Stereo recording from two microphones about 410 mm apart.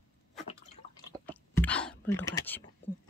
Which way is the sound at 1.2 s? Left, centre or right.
Centre.